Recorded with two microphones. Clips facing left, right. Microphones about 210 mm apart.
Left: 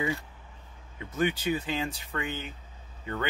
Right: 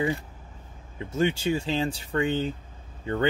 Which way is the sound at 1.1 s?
30° right (ahead or behind).